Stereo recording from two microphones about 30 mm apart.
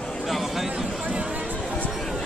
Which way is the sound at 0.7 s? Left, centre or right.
Right.